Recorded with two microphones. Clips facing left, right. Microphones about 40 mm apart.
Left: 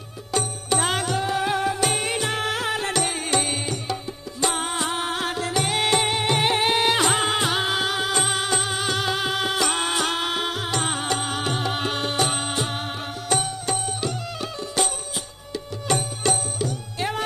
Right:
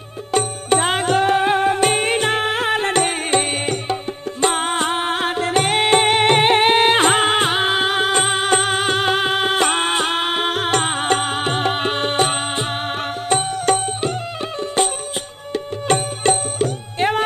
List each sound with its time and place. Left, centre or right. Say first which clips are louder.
0.3 s music: right 7 dB; right
1.1 s music: right 7 dB; right